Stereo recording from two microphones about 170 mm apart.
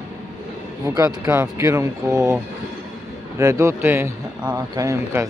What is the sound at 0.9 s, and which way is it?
Speech, 15° right (ahead or behind).